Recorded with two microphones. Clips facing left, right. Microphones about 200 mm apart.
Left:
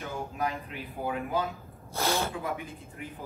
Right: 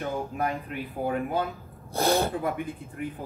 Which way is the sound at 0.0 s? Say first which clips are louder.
Right 4 dB; 55° right (ahead or behind).